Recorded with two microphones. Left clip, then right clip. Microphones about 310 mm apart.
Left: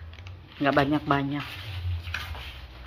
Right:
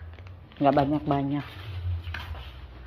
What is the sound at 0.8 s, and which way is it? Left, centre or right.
Speech, centre.